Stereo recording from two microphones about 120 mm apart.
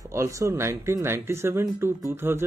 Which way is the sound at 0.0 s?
25° right (ahead or behind).